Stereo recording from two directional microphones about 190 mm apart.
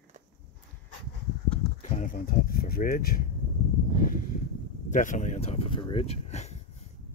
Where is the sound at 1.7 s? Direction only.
40° left (ahead or behind).